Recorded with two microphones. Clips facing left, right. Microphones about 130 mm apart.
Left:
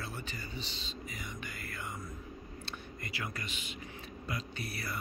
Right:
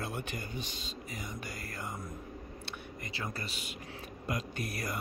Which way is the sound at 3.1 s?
35° right (ahead or behind).